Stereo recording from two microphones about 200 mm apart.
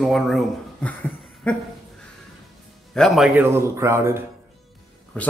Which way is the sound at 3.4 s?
15° right (ahead or behind).